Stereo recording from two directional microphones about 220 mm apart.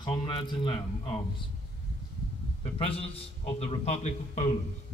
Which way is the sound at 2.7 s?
25° left (ahead or behind).